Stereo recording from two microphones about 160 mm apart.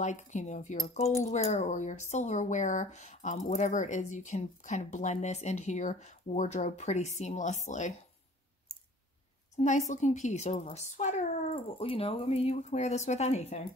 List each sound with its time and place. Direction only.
0.0 s speech: 50° left (ahead or behind)
8.7 s clicking: centre (ahead or behind)
9.6 s speech: 45° left (ahead or behind)
11.8 s speech: 35° left (ahead or behind)